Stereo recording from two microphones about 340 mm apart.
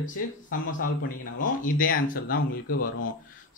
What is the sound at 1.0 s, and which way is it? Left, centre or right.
Speech, left.